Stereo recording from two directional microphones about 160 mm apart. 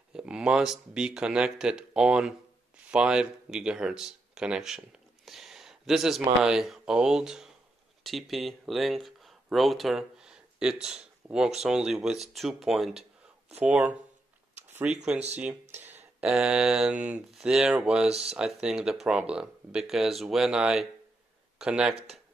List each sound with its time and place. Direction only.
0.1 s speech: 5° right (ahead or behind)
15.8 s a sound: 45° right (ahead or behind)
16.2 s speech: 5° right (ahead or behind)
21.9 s speech: 40° right (ahead or behind)